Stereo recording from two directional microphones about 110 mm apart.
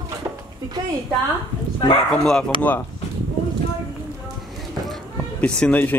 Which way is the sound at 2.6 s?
15° left (ahead or behind).